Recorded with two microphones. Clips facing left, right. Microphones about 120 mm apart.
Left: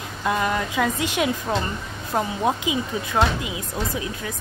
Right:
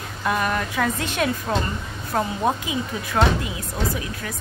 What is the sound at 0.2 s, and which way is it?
Speech, 20° left (ahead or behind).